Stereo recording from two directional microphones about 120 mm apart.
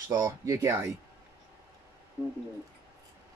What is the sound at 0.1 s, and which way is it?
Speech, 30° right (ahead or behind).